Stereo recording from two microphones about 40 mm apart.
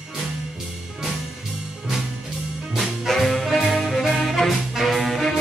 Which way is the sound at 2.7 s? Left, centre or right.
Centre.